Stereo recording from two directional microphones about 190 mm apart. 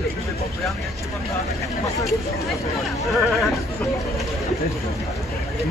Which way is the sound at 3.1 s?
Centre (ahead or behind).